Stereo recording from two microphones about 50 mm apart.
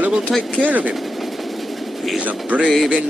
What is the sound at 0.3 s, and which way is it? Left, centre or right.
Speech, centre.